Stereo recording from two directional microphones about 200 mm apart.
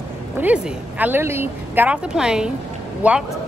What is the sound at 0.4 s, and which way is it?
A woman's voice, 10° right (ahead or behind).